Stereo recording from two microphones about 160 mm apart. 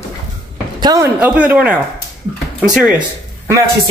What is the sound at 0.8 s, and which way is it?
Speech, 25° right (ahead or behind).